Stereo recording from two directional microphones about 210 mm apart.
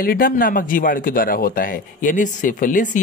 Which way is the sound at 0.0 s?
45° left (ahead or behind).